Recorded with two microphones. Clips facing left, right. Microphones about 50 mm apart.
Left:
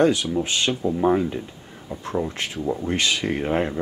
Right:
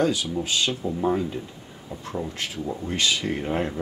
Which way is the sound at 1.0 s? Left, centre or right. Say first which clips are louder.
Left 4 dB; left.